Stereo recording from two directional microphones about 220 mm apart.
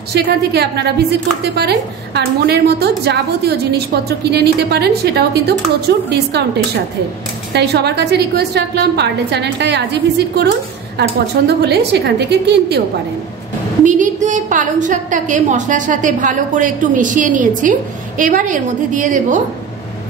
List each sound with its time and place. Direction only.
0.1 s a woman's voice: 50° right (ahead or behind)
7.5 s a woman's voice: 50° right (ahead or behind)
13.8 s a woman's voice: 35° right (ahead or behind)